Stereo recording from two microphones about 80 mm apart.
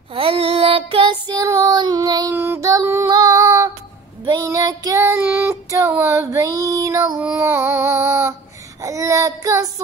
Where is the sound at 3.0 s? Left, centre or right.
Right.